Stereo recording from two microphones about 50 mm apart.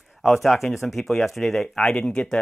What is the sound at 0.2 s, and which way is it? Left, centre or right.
Speech, centre.